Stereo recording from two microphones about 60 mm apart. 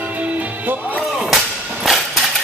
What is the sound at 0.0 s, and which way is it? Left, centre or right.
Music, right.